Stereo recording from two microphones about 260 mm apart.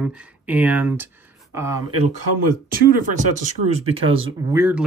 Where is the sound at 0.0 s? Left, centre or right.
Centre.